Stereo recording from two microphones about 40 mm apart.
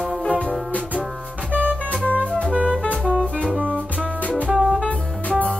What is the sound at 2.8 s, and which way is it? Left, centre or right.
Music, left.